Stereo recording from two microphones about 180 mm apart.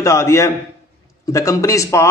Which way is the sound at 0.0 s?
15° left (ahead or behind).